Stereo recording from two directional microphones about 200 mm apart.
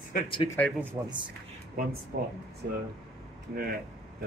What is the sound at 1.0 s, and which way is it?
Speech, 15° right (ahead or behind).